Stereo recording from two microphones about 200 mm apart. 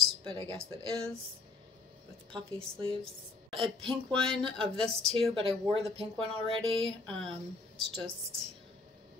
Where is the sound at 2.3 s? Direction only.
25° right (ahead or behind).